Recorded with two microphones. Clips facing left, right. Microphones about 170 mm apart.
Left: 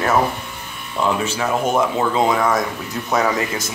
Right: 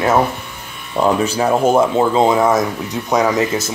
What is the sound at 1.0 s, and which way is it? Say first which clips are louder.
Speech: right 5 dB; 35° right (ahead or behind).